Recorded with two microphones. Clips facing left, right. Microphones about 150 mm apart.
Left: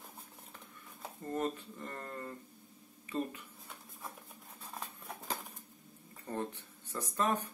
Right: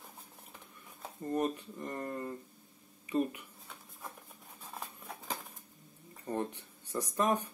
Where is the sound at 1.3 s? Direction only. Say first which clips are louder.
Right 3 dB; 15° right (ahead or behind).